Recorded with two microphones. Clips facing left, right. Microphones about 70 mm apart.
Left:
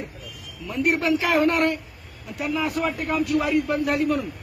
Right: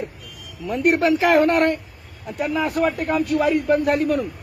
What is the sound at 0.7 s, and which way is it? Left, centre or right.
A man's voice, right.